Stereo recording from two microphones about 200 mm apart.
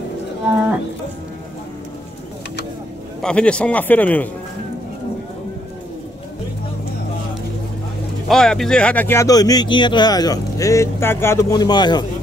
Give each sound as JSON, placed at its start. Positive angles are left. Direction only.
{"t": 3.2, "sound": "speech", "side_deg": 5}
{"t": 8.3, "sound": "speech", "side_deg": 0}